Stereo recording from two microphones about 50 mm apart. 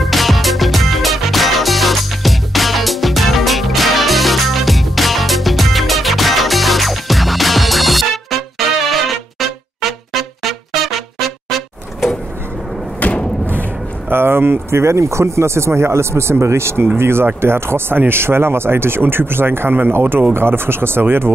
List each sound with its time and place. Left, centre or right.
0.0 s music: centre
13.0 s a sound: left
14.0 s speech: right
16.8 s speech: right